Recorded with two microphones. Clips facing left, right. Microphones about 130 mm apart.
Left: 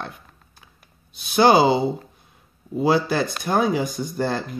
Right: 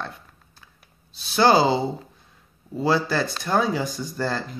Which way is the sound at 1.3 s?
15° left (ahead or behind).